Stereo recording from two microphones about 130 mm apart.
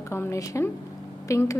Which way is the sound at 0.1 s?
20° left (ahead or behind).